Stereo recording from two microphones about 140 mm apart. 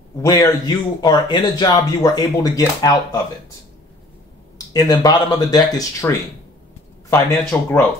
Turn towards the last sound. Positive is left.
turn(degrees=20)  # may be behind; listen again after turning